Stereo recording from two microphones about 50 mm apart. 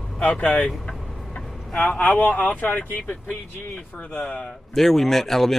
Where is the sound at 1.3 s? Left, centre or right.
Left.